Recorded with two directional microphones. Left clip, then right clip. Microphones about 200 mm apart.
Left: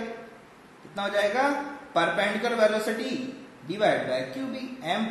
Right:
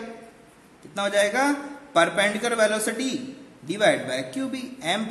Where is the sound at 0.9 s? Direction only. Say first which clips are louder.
Right 3 dB; 40° right (ahead or behind).